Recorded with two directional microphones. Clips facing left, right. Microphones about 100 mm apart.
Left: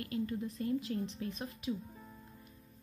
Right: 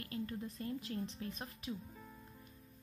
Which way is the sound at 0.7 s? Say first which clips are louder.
Left 7 dB; 35° right (ahead or behind).